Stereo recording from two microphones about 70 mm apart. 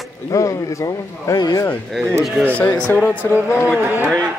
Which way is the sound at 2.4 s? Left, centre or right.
Left.